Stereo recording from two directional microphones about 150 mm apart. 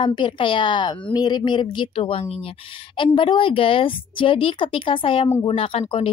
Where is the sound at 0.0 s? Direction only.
30° left (ahead or behind).